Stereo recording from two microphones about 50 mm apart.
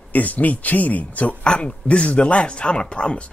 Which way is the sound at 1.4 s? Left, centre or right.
Centre.